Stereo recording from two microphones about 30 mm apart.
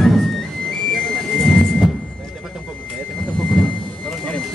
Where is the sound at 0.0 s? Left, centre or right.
Centre.